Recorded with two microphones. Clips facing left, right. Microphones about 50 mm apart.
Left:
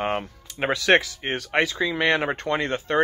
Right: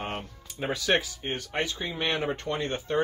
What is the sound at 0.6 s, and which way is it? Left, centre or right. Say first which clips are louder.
Speech: left 7 dB; left.